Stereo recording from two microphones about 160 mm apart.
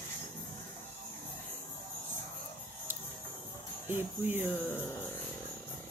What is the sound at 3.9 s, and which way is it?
Speech, 15° right (ahead or behind).